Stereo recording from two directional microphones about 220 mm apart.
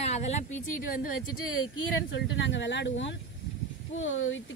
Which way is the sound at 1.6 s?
60° left (ahead or behind).